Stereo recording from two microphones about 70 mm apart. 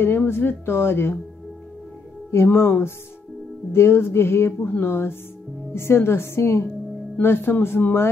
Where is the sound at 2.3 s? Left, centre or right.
Left.